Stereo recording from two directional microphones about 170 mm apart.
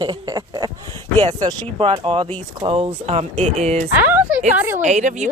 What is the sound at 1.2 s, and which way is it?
Speech, 30° right (ahead or behind).